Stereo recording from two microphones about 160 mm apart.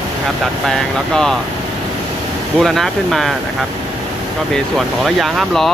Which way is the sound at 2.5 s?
Centre (ahead or behind).